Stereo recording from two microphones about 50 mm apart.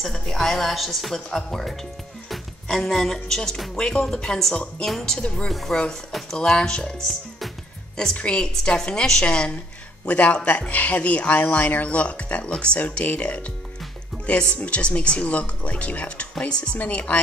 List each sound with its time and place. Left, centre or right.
0.0 s speech: centre
2.2 s music: centre
3.7 s a woman's voice: centre
5.2 s a woman's voice: centre
7.0 s music: centre
8.0 s a woman's voice: centre
14.6 s speech: left